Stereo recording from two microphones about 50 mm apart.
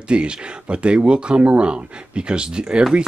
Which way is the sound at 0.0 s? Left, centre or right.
Centre.